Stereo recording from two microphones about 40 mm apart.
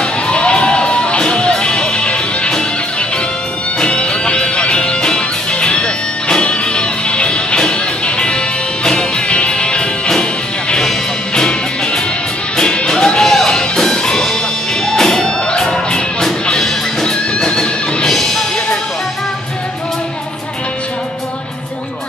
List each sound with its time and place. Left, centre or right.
0.0 s music: left
3.8 s music: left
8.8 s music: left
10.8 s music: centre
12.5 s music: left